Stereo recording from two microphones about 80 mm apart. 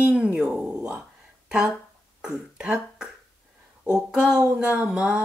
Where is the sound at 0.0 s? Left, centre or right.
Centre.